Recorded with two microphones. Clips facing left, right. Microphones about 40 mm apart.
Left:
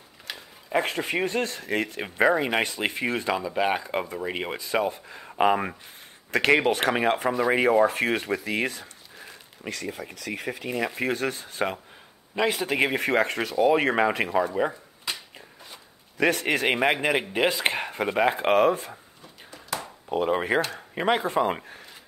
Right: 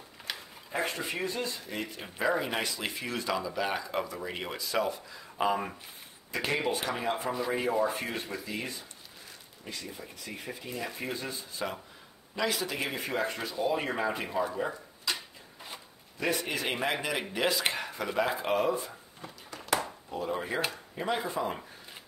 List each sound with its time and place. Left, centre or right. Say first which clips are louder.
0.7 s speech: left 7 dB; left
6.3 s speech: left 9 dB; left
9.7 s speech: left 8 dB; left
12.4 s speech: left 6 dB; left
12.7 s speech: left 10 dB; left
16.2 s speech: left 8 dB; left
19.5 s a sound: right 3 dB; right
20.1 s speech: left 11 dB; left